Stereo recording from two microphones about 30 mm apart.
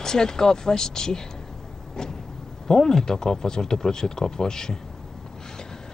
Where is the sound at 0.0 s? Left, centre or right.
Centre.